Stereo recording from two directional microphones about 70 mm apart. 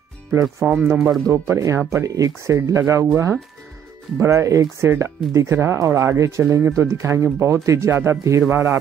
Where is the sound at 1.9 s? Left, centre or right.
Right.